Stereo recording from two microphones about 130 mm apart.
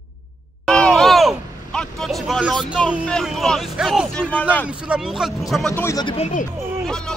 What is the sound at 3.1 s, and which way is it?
A man's voice, centre (ahead or behind).